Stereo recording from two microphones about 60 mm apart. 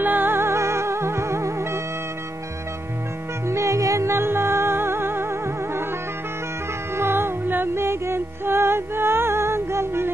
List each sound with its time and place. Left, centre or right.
0.0 s music: right
3.4 s music: right
7.0 s music: right